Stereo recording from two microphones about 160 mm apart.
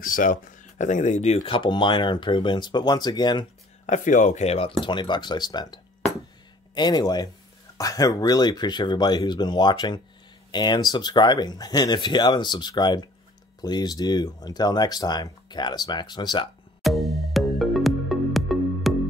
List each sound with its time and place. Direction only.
0.0 s speech: 55° left (ahead or behind); by 3.4 s 25° left (ahead or behind)
3.8 s speech: 50° left (ahead or behind); by 16.4 s 25° left (ahead or behind)
16.8 s music: centre (ahead or behind)